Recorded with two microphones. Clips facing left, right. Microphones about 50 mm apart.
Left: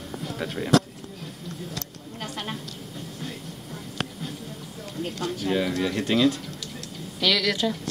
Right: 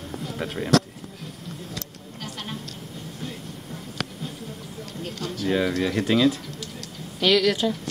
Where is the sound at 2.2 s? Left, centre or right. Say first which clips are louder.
Left 2 dB; left.